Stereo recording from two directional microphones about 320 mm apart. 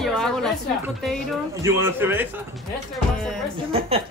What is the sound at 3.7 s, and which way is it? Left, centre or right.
Speech, centre.